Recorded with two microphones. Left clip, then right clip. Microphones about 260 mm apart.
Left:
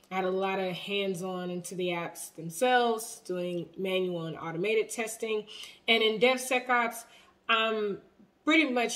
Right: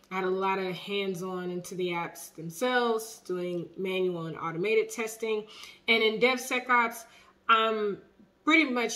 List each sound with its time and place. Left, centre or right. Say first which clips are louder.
0.1 s speech: right 1 dB; centre